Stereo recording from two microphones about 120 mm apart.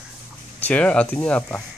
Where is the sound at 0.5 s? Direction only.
10° left (ahead or behind).